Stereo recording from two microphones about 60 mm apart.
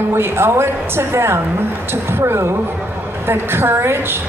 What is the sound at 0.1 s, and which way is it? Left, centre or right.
A woman's voice, right.